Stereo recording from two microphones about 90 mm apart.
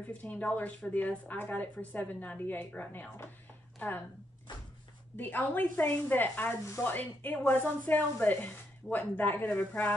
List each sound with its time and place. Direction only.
0.0 s speech: 15° left (ahead or behind)
5.1 s speech: 20° left (ahead or behind)